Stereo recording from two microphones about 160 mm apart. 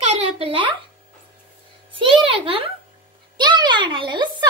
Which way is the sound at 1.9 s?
35° right (ahead or behind).